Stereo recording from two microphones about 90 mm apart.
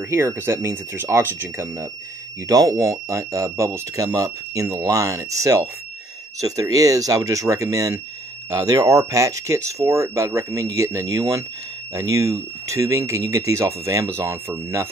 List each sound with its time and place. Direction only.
0.1 s speech: 25° right (ahead or behind)
2.4 s speech: 40° right (ahead or behind)